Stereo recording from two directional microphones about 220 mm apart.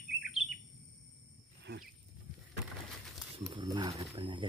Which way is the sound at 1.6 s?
50° right (ahead or behind).